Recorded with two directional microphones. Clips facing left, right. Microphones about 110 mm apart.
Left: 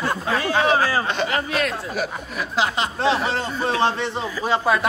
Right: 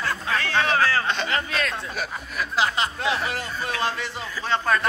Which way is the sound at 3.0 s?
25° left (ahead or behind).